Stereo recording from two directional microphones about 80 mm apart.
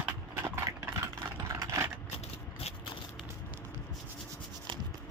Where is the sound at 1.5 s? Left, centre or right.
Right.